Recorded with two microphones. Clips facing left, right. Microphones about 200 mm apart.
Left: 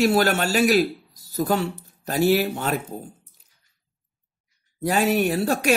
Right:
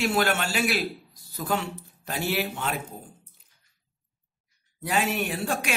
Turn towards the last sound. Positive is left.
turn(degrees=40)  # may be behind; listen again after turning